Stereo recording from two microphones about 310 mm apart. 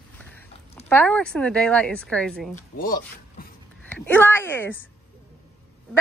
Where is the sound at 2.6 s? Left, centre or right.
Left.